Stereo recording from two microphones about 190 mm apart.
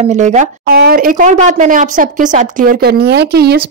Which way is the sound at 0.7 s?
50° right (ahead or behind).